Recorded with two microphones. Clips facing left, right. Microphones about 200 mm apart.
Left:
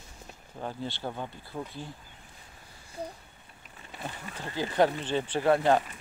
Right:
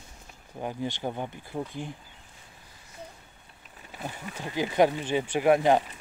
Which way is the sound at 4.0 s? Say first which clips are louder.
Right 2 dB; 15° right (ahead or behind).